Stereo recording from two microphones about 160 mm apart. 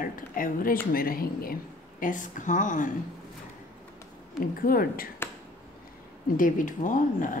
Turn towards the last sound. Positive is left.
turn(degrees=55)  # may be behind; listen again after turning